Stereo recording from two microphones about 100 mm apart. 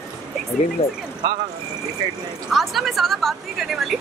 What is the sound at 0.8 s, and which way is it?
Speech, 80° left.